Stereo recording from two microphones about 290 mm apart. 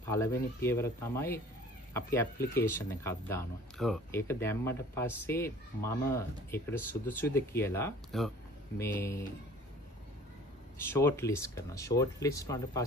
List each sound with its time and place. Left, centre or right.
0.0 s speech: centre
10.8 s speech: centre